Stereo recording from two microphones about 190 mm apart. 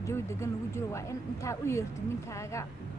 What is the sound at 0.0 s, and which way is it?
Speech, 15° left (ahead or behind).